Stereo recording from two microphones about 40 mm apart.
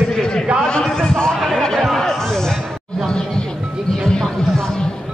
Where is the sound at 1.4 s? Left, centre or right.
Centre.